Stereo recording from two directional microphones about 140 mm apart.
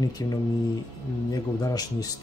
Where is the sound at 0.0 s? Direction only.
25° left (ahead or behind).